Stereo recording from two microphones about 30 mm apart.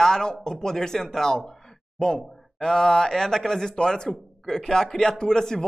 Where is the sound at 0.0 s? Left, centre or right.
Centre.